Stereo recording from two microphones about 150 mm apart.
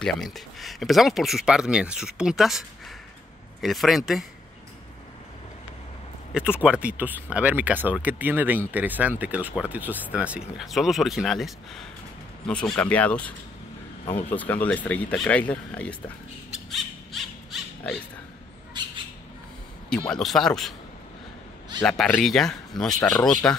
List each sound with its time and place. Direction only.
0.0 s speech: centre (ahead or behind)
3.6 s speech: centre (ahead or behind)
6.3 s speech: 5° right (ahead or behind); by 13.3 s 10° left (ahead or behind)
14.3 s speech: 10° left (ahead or behind)
16.7 s a sound: centre (ahead or behind)
20.1 s speech: centre (ahead or behind)
21.8 s speech: 5° left (ahead or behind)